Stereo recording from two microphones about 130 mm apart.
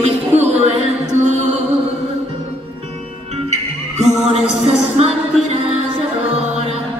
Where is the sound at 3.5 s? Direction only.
60° right (ahead or behind).